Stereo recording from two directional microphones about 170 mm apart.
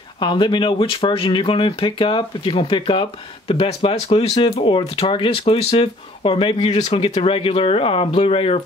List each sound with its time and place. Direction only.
0.2 s speech: 30° left (ahead or behind)